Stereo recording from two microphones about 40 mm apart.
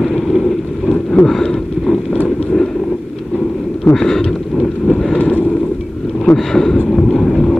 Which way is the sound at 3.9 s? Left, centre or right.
Centre.